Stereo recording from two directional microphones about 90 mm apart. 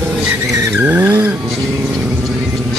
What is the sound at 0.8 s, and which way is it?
Vehicle, 20° right (ahead or behind).